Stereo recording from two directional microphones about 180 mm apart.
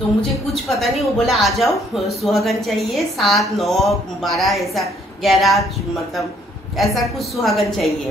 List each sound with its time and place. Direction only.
0.7 s speech: centre (ahead or behind)
6.8 s speech: centre (ahead or behind)